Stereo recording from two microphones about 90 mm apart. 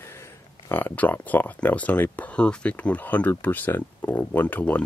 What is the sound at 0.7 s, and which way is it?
Speech, 25° left (ahead or behind).